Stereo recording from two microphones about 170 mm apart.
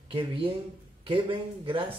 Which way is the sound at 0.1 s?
30° right (ahead or behind).